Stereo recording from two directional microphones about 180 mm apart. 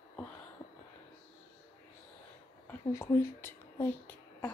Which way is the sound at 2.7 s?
15° left (ahead or behind).